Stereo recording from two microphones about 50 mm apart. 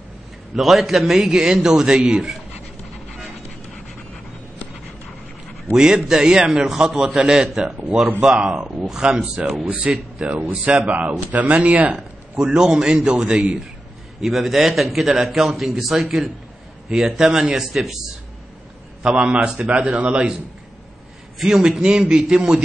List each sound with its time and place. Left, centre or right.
0.6 s a man's voice: centre
6.0 s a man's voice: centre; by 12.0 s right
12.4 s a man's voice: centre
14.2 s a man's voice: centre
19.0 s a man's voice: centre
21.4 s a man's voice: centre